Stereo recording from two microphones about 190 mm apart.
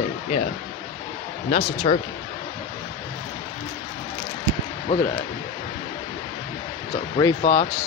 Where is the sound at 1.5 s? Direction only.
35° left (ahead or behind).